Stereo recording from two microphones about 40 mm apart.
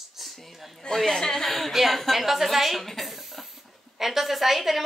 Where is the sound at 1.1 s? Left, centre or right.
Centre.